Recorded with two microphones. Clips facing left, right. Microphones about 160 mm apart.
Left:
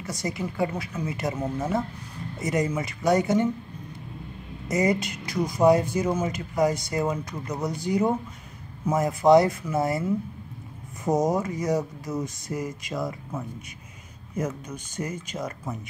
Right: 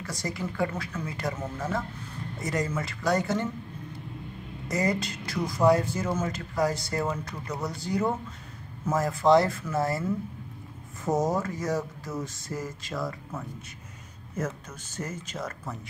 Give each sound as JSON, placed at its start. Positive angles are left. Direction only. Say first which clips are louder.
{"t": 0.0, "sound": "speech", "louder": "left 3 dB", "side_deg": 20}
{"t": 4.6, "sound": "speech", "louder": "left 4 dB", "side_deg": 20}